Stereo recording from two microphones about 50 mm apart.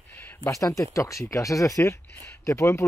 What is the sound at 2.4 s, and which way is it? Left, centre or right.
Speech, left.